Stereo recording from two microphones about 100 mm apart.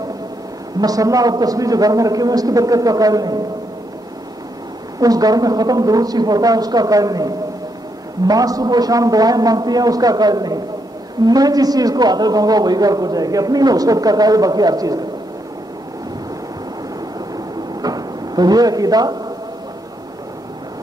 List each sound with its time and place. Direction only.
0.7 s a man's voice: 40° right (ahead or behind)
5.0 s a man's voice: 40° right (ahead or behind)
17.8 s drawer open or close: 40° right (ahead or behind)